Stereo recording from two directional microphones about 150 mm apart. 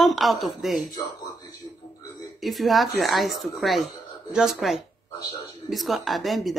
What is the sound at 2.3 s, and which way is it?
Speech, centre (ahead or behind).